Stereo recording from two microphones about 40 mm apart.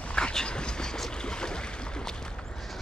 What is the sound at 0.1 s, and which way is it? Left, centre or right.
Dog, centre.